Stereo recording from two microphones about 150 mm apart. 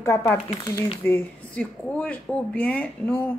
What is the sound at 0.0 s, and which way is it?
Speech, 15° left (ahead or behind).